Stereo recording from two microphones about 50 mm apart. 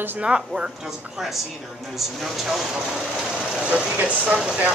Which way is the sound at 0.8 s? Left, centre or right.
Centre.